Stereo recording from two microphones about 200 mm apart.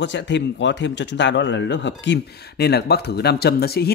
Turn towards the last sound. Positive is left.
turn(degrees=50)  # may be behind; listen again after turning